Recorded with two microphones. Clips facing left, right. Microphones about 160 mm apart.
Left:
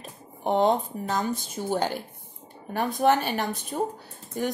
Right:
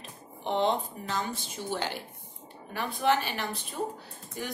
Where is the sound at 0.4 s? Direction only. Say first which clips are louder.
Left 5 dB; 45° left (ahead or behind).